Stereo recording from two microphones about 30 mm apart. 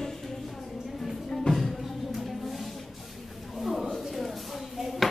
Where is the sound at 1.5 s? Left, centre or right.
Centre.